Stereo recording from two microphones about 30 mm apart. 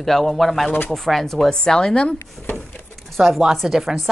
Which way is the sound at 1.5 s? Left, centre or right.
Left.